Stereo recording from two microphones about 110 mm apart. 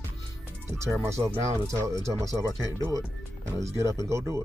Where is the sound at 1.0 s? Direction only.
25° right (ahead or behind).